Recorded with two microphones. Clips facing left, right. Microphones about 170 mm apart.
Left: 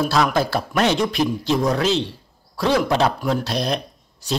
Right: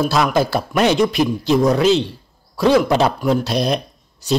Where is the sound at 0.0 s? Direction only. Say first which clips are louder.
Right 2 dB; 5° right (ahead or behind).